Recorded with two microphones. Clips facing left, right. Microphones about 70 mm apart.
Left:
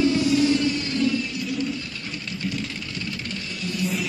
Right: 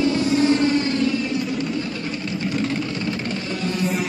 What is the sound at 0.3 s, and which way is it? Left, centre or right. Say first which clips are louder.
Music: right 3 dB; right.